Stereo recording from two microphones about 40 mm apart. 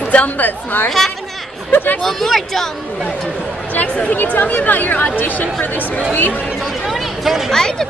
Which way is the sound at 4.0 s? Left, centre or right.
Left.